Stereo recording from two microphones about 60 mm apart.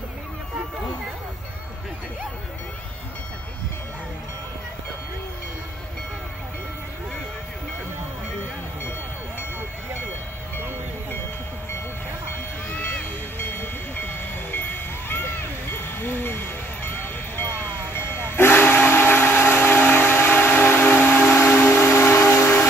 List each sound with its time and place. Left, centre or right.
13.4 s train: left
15.0 s music: left
16.0 s vehicle: left
16.9 s music: left
17.9 s steam whistle: left
21.4 s vehicle: left